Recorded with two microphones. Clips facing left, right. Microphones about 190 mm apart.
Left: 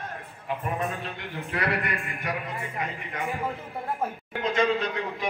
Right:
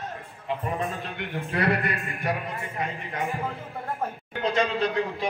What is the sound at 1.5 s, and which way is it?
Speech, 30° right (ahead or behind).